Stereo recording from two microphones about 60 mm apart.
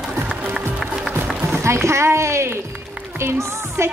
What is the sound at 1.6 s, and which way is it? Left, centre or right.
A woman's voice, right.